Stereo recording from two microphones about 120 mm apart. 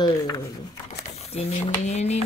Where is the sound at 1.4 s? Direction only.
60° left (ahead or behind).